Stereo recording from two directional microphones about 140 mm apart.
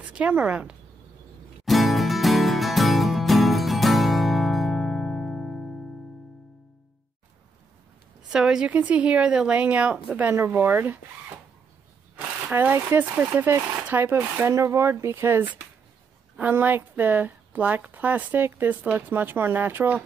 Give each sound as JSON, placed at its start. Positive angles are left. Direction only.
{"t": 0.1, "sound": "a woman's voice", "side_deg": -10}
{"t": 1.7, "sound": "music", "side_deg": 0}
{"t": 8.3, "sound": "a woman's voice", "side_deg": -5}
{"t": 12.4, "sound": "a woman's voice", "side_deg": -15}